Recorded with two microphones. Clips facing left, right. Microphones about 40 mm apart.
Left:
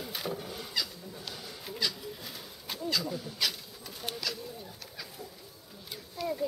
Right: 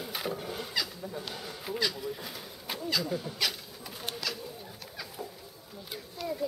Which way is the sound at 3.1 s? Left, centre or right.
Right.